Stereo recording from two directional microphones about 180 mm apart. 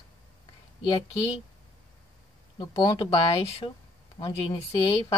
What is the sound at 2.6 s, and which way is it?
Speech, 20° left (ahead or behind).